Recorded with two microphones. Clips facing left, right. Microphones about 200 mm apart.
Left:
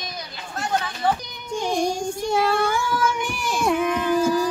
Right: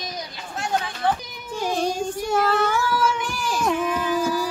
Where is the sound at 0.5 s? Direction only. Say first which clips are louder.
Even; centre (ahead or behind).